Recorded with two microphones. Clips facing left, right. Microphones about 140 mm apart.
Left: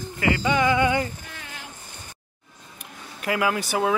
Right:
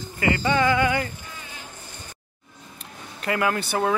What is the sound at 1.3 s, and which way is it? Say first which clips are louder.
Boat: even; 75° left (ahead or behind).